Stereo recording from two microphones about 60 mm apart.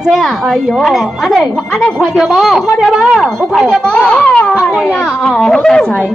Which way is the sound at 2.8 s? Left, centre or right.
Centre.